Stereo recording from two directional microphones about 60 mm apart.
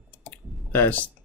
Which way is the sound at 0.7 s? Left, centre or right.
Left.